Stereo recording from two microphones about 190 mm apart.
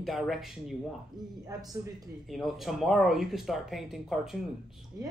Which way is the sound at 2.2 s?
Centre (ahead or behind).